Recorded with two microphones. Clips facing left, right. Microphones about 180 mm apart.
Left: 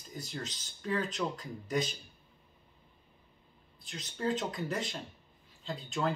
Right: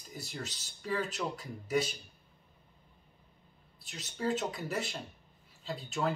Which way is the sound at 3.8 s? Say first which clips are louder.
Even; 5° right (ahead or behind).